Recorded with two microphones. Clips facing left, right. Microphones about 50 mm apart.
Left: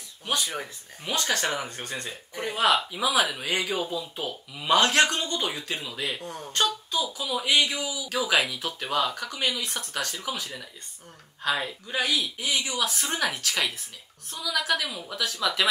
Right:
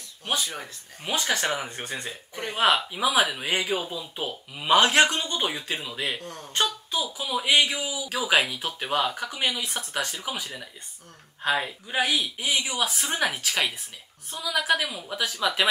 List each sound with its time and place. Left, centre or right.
1.0 s a woman's voice: centre
4.2 s speech: right
6.2 s speech: centre
6.5 s a woman's voice: centre
8.2 s speech: centre
8.8 s a woman's voice: centre